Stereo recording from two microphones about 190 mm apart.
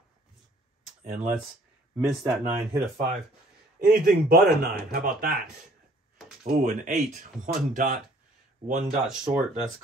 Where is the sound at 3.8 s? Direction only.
50° right (ahead or behind).